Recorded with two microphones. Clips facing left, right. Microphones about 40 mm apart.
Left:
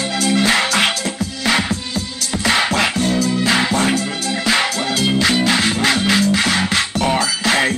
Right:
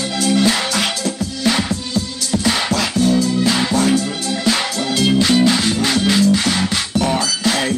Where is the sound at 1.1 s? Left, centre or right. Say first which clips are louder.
Even; centre.